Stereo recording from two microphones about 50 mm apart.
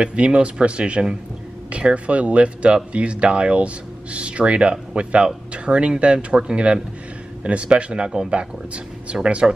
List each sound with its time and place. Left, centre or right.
0.0 s speech: right